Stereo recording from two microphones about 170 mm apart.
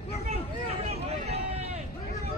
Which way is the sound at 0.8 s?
35° right (ahead or behind).